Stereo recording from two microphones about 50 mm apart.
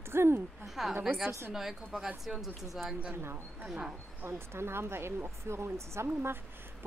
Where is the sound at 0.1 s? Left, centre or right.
Right.